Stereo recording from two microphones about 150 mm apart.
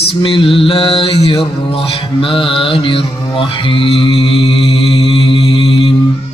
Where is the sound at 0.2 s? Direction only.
35° left (ahead or behind).